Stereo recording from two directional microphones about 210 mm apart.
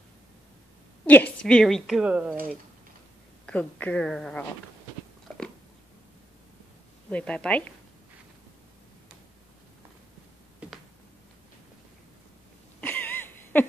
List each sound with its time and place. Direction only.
1.0 s a woman's voice: 5° left (ahead or behind)
3.4 s a woman's voice: 5° left (ahead or behind)
5.3 s biting: 5° left (ahead or behind)
7.1 s a woman's voice: 5° left (ahead or behind)
10.6 s a sound: 5° right (ahead or behind)
12.8 s a sound: 10° left (ahead or behind)